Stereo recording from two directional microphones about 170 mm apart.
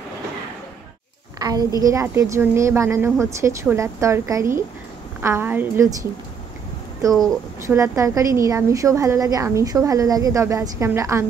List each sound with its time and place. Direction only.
1.4 s a child's voice: 25° right (ahead or behind)
7.6 s a woman's voice: 15° right (ahead or behind)